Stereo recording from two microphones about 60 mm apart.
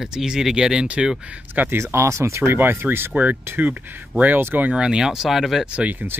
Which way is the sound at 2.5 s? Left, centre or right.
Right.